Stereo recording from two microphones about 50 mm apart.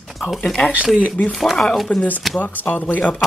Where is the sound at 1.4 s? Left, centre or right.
Centre.